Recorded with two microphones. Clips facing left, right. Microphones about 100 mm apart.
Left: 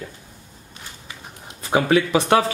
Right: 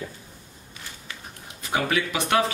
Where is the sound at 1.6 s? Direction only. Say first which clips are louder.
Left 7 dB; 30° left (ahead or behind).